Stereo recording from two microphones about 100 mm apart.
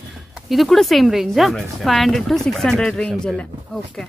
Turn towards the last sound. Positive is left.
turn(degrees=5)  # may be behind; listen again after turning